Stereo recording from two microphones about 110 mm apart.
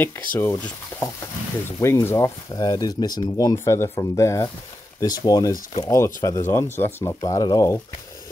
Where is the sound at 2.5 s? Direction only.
35° left (ahead or behind).